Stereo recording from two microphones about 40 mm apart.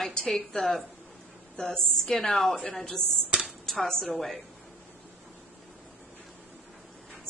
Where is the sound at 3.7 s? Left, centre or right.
Centre.